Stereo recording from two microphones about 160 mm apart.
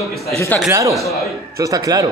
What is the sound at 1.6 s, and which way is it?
Speech, 20° right (ahead or behind).